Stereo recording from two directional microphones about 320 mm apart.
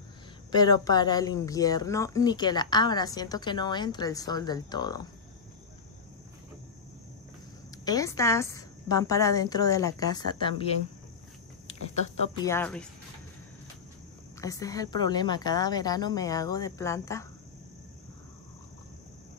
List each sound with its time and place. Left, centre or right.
0.5 s speech: centre
7.8 s speech: centre
12.4 s speech: centre
14.4 s speech: centre